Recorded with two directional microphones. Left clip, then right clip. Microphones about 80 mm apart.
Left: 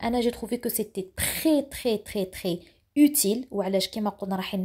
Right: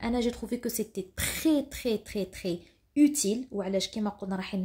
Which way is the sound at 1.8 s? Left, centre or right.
Left.